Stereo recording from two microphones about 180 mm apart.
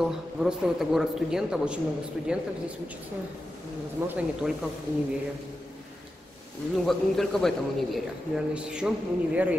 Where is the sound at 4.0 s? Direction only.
15° right (ahead or behind).